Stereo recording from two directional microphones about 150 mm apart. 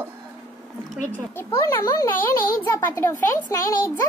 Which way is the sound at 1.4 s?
15° left (ahead or behind).